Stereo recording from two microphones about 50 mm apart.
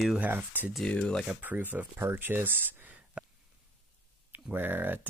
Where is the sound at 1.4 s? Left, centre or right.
Right.